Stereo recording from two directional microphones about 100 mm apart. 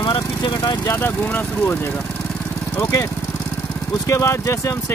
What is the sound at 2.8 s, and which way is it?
Speech, 30° left (ahead or behind).